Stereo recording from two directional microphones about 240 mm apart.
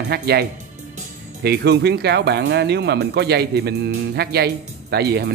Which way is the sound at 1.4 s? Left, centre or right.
Right.